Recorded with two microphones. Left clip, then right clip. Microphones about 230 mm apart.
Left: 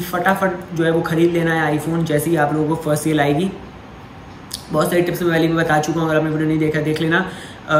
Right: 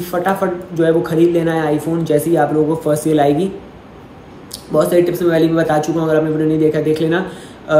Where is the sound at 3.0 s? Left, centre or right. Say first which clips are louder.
Right 5 dB; centre.